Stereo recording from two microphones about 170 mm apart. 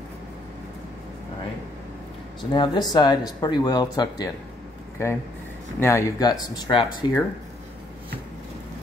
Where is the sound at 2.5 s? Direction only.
25° left (ahead or behind).